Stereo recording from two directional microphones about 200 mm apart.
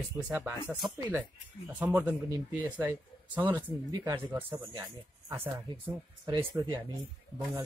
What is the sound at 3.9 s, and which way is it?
Speech, 20° right (ahead or behind).